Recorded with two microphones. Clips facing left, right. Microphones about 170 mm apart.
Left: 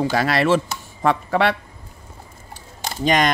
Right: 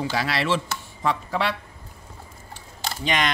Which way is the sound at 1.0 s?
60° left (ahead or behind).